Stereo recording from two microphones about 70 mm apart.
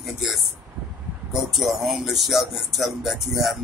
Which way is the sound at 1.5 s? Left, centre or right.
Centre.